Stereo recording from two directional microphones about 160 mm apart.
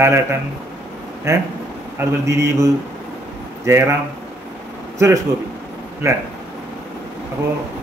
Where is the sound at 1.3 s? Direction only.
20° right (ahead or behind).